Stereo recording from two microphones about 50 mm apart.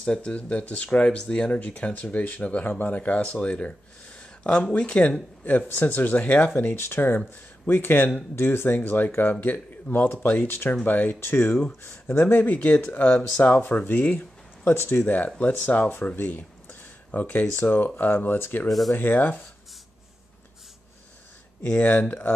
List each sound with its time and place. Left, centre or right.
0.0 s speech: left
5.8 s speech: left
6.5 s speech: left
10.4 s speech: left
11.1 s speech: left
11.6 s speech: left
18.7 s speech: centre
18.9 s speech: left
21.8 s speech: left